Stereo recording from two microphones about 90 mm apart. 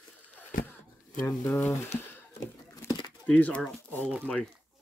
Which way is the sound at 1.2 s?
30° left (ahead or behind).